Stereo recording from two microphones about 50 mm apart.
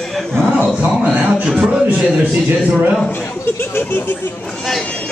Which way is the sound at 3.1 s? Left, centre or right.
Left.